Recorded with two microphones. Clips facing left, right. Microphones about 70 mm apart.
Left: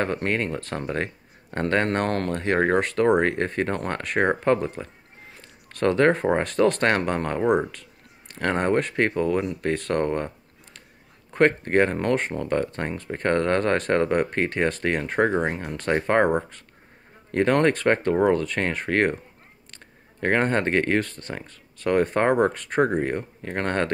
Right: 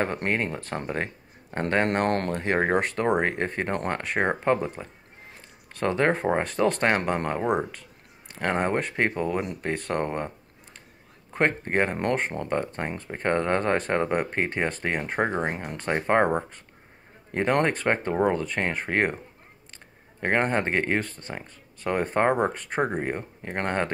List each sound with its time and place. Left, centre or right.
0.0 s speech: centre
2.0 s speech: right
2.3 s speech: centre
11.3 s speech: centre
17.3 s speech: centre
20.2 s speech: centre